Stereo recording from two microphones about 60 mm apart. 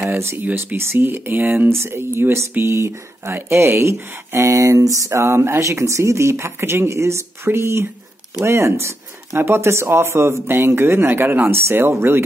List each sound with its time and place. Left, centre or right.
0.0 s speech: right
2.6 s speech: right
5.6 s speech: right